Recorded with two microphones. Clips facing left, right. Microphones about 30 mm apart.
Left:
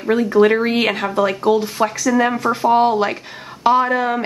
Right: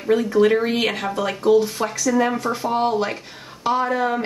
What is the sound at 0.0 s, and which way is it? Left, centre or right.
Speech, centre.